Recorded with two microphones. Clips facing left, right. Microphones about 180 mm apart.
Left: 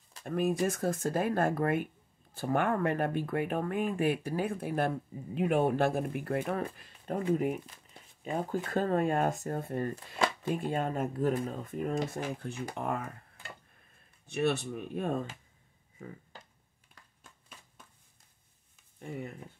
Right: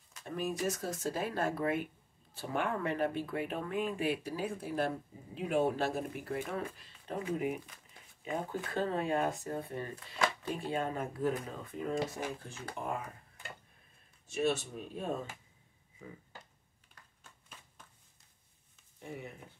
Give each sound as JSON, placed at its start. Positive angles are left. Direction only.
{"t": 0.2, "sound": "speech", "side_deg": 55}
{"t": 12.7, "sound": "speech", "side_deg": 70}
{"t": 14.3, "sound": "speech", "side_deg": 60}